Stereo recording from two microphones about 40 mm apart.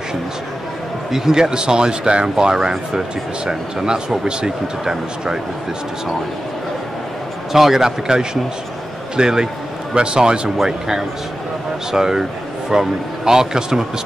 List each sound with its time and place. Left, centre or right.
1.1 s a man's voice: centre
7.5 s a man's voice: centre
10.6 s a man's voice: centre